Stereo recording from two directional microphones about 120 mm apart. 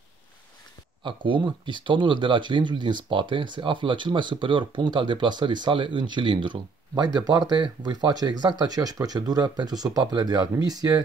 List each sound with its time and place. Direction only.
1.0 s speech: 45° right (ahead or behind)